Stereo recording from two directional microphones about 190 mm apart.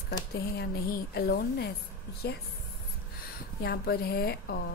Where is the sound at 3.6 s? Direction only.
55° left (ahead or behind).